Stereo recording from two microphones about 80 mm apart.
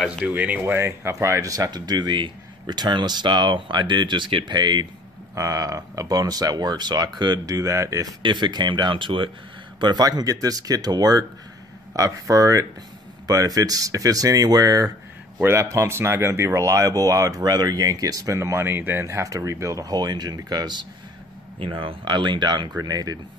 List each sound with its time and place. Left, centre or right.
0.2 s speech: centre
0.7 s speech: right
5.3 s speech: right
8.2 s speech: right
9.8 s speech: right
15.4 s speech: right
21.6 s speech: right
22.8 s speech: right